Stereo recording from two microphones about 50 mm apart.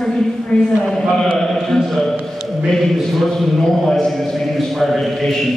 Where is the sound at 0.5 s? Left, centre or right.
Left.